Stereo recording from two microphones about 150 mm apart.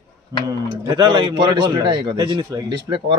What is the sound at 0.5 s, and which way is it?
Speech, 30° right (ahead or behind).